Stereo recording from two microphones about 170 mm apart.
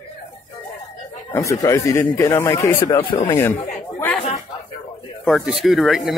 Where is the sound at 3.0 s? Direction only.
30° left (ahead or behind).